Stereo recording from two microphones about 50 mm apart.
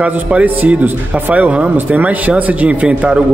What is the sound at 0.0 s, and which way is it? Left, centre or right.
Speech, right.